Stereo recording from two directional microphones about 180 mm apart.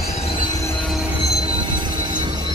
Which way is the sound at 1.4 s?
25° right (ahead or behind).